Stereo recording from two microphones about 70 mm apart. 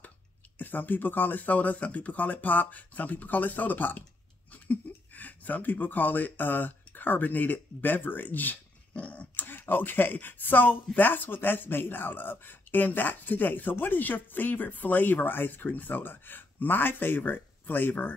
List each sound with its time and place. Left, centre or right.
0.6 s speech: left